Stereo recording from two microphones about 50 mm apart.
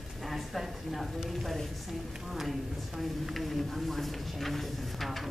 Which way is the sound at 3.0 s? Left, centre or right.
Centre.